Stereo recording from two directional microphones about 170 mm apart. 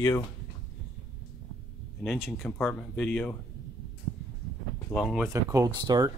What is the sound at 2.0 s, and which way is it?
Speech, centre (ahead or behind).